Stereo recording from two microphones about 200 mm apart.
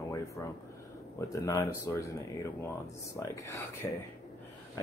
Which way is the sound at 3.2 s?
15° left (ahead or behind).